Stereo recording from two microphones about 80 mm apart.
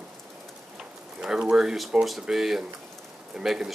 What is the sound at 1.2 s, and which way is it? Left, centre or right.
Speech, centre.